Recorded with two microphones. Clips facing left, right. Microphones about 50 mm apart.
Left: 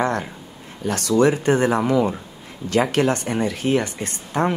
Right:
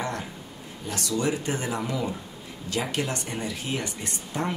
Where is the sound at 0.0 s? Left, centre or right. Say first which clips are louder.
Left 9 dB; left.